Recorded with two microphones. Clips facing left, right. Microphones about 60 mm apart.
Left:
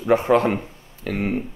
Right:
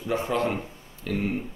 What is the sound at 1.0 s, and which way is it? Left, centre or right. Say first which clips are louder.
Speech: left 3 dB; left.